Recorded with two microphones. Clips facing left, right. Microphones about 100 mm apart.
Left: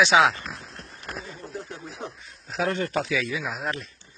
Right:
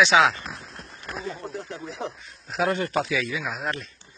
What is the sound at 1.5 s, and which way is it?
Speech, 90° right.